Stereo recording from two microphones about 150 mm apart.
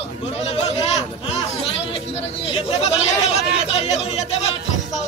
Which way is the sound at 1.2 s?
40° left (ahead or behind).